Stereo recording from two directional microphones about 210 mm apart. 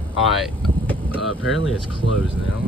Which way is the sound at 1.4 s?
70° left (ahead or behind).